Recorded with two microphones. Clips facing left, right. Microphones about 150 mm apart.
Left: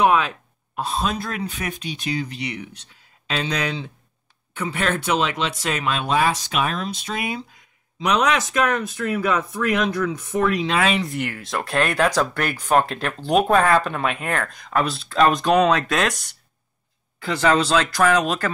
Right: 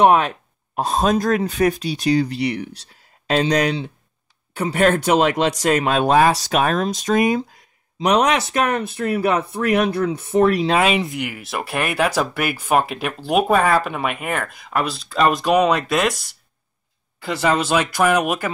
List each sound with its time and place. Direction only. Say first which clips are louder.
0.7 s speech: right 6 dB; 45° right (ahead or behind)
8.1 s speech: right 3 dB; 30° right (ahead or behind)
11.1 s speech: even; centre (ahead or behind)